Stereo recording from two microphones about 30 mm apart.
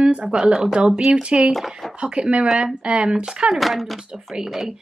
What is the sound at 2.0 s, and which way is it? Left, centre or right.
A woman's voice, right.